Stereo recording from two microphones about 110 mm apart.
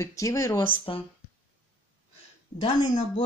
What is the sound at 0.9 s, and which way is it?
Speech, 50° left (ahead or behind).